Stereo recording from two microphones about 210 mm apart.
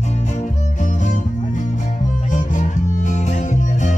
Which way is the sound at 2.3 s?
35° left (ahead or behind).